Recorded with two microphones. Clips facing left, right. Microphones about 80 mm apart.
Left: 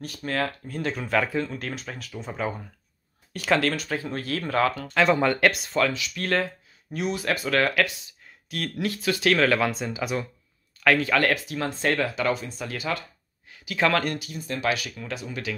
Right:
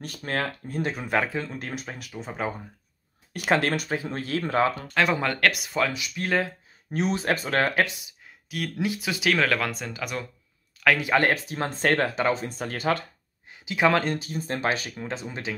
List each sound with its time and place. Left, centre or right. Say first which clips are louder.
0.2 s speech: left 1 dB; right
0.7 s speech: right 1 dB; right
0.9 s speech: left 3 dB; centre
3.4 s speech: even; right
4.8 s speech: left 3 dB; centre
6.9 s speech: right 2 dB; right
8.5 s speech: even; centre
8.7 s speech: left 2 dB; centre
9.3 s speech: left 2 dB; centre
11.0 s speech: even; right
12.4 s speech: right 4 dB; right
13.5 s speech: right 1 dB; centre